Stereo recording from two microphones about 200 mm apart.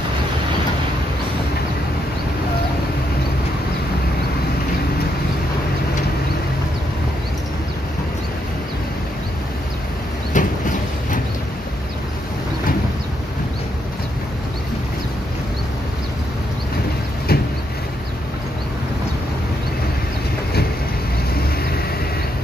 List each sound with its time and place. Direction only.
10.3 s vehicle: 40° left (ahead or behind)
17.3 s vehicle: 50° left (ahead or behind)